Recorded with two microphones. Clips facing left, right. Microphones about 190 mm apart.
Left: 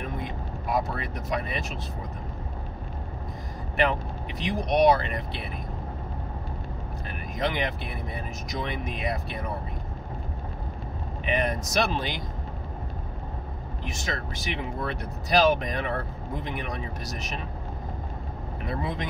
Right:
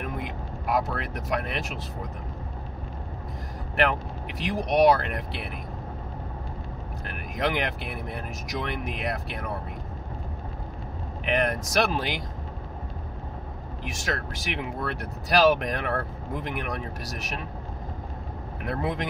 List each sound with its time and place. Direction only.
0.0 s vehicle: 75° right (ahead or behind)
4.6 s speech: 5° right (ahead or behind)
5.0 s speech: 70° right (ahead or behind)
7.1 s speech: 75° right (ahead or behind)
11.3 s speech: 70° right (ahead or behind)
13.8 s speech: 75° right (ahead or behind)
18.7 s speech: 70° right (ahead or behind)